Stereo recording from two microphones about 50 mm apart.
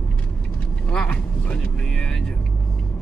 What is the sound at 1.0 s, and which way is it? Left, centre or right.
Vehicle, left.